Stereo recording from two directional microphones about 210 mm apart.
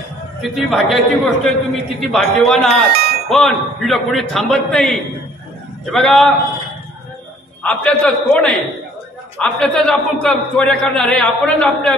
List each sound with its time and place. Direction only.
0.4 s a man's voice: centre (ahead or behind)
2.9 s a sound: 50° right (ahead or behind)
3.3 s a man's voice: centre (ahead or behind)
7.6 s a man's voice: 5° left (ahead or behind)